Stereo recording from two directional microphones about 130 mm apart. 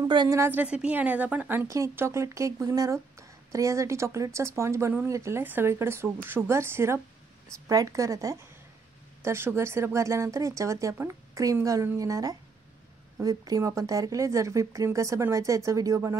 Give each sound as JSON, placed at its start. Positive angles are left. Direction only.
{"t": 0.1, "sound": "a woman's voice", "side_deg": -35}
{"t": 0.4, "sound": "a woman's voice", "side_deg": -15}